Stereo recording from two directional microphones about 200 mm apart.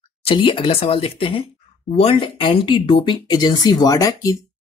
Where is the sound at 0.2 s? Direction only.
25° left (ahead or behind).